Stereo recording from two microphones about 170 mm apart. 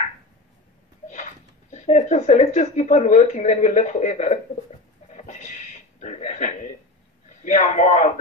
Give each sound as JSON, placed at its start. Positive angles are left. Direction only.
{"t": 1.0, "sound": "speech", "side_deg": 45}
{"t": 5.1, "sound": "a sound", "side_deg": 45}
{"t": 7.2, "sound": "a man's voice", "side_deg": 45}